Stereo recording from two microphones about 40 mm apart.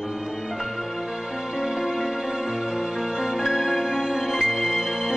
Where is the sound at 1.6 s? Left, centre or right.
Centre.